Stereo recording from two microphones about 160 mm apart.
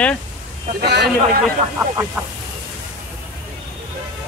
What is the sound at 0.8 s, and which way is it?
Speech, 90° right.